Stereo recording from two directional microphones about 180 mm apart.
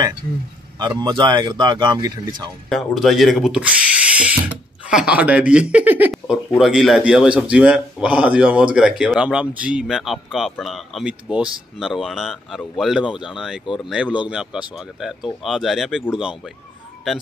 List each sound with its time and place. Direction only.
0.7 s speech: 25° right (ahead or behind)
2.7 s a man's voice: centre (ahead or behind)